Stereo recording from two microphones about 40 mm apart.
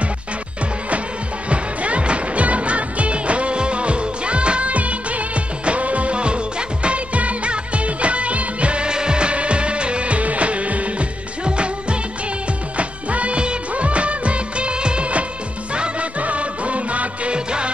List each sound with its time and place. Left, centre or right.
1.5 s music: right
12.7 s music of bollywood: right
15.7 s music: right